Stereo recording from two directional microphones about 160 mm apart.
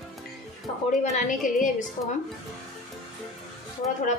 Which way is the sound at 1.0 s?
50° left (ahead or behind).